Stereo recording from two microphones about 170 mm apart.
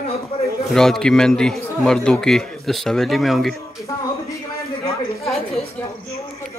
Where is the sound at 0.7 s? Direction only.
5° left (ahead or behind).